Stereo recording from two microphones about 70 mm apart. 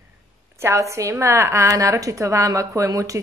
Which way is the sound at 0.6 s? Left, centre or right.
Right.